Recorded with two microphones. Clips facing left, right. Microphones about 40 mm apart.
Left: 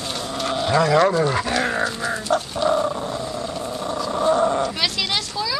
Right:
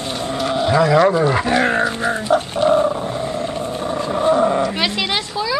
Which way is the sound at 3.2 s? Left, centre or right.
Right.